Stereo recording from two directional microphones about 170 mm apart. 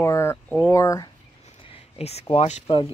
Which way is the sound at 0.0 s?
15° left (ahead or behind).